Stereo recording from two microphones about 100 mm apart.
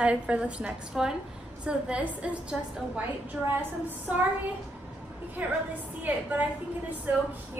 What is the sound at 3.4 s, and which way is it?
Speech, 20° right (ahead or behind).